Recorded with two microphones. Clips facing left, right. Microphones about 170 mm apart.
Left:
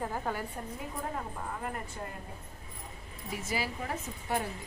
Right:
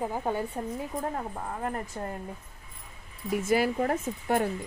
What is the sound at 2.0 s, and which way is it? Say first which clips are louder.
Speech: right 6 dB; 45° right (ahead or behind).